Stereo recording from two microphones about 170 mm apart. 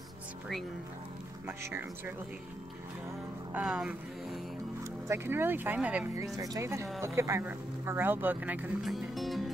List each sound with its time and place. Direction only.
1.6 s speech: 15° right (ahead or behind)
3.5 s music: 5° right (ahead or behind)
5.0 s speech: 15° right (ahead or behind)
6.3 s speech: 20° right (ahead or behind); by 9.5 s centre (ahead or behind)